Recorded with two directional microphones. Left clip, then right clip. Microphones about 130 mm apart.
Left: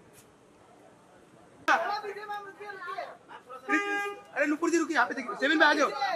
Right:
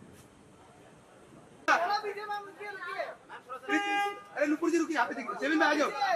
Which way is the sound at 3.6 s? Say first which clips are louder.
Left 1 dB; 50° left (ahead or behind).